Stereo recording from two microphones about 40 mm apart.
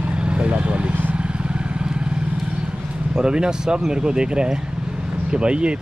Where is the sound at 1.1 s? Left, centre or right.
Right.